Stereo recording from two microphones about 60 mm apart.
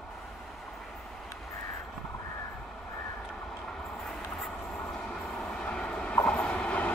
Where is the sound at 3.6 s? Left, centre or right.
Centre.